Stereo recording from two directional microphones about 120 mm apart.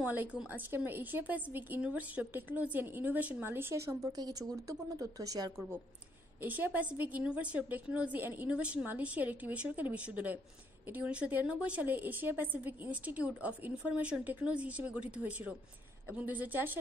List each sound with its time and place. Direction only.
0.0 s speech: 10° right (ahead or behind); by 5.5 s 30° right (ahead or behind)
6.4 s speech: 15° right (ahead or behind)